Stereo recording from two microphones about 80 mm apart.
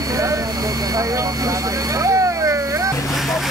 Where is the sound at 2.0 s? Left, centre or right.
Right.